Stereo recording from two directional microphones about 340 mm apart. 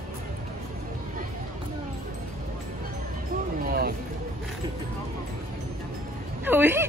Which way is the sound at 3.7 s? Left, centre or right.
Right.